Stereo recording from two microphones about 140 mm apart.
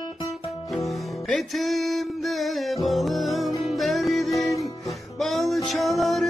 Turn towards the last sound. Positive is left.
turn(degrees=0)  # may be behind; listen again after turning